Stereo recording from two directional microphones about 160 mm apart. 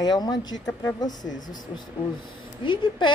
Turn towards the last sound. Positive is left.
turn(degrees=30)  # may be behind; listen again after turning